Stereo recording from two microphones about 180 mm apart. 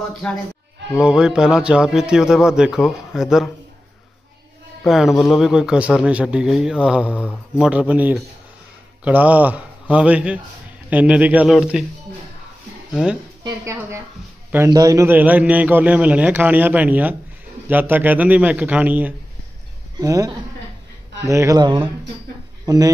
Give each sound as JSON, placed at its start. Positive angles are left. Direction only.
{"t": 1.0, "sound": "speech", "side_deg": -5}
{"t": 4.8, "sound": "a man's voice", "side_deg": 0}
{"t": 12.9, "sound": "speech", "side_deg": -5}
{"t": 13.4, "sound": "a woman's voice", "side_deg": -20}
{"t": 20.0, "sound": "speech", "side_deg": -20}